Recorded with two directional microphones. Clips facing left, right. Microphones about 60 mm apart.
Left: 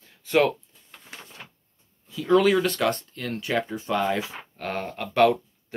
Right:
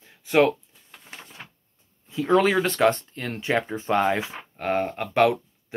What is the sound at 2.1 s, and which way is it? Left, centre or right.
Speech, right.